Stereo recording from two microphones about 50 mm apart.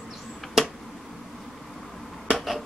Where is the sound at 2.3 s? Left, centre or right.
Centre.